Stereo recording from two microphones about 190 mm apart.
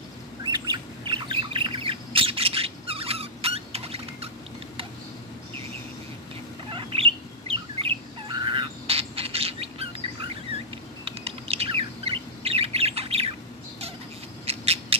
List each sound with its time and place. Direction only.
0.4 s bird: 25° right (ahead or behind)
6.7 s chirp: 30° right (ahead or behind)
14.4 s rodents: 35° right (ahead or behind)